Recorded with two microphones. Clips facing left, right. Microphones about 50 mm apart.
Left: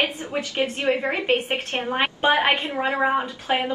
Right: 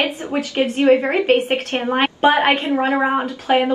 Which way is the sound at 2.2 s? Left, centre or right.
Centre.